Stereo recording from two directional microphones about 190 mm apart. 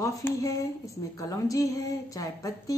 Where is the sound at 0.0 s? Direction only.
15° left (ahead or behind).